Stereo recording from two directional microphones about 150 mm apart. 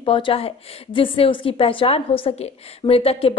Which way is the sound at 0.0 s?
35° left (ahead or behind).